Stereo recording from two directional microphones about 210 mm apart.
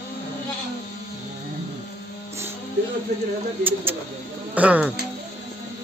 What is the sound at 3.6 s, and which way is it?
Speech, 10° right (ahead or behind).